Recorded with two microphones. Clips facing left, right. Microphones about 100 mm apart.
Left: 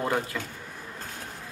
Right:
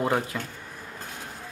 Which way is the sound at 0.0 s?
20° right (ahead or behind).